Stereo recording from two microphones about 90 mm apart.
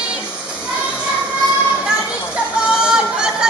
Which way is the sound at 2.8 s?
10° right (ahead or behind).